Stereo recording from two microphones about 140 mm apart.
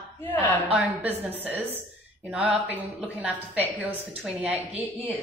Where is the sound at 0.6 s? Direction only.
10° right (ahead or behind).